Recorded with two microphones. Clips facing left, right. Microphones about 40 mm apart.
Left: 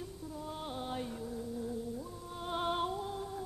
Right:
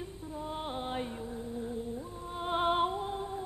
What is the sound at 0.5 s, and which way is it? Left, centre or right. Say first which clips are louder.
Music: right 4 dB; right.